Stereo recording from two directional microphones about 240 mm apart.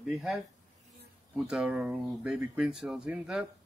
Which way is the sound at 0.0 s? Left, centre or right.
Centre.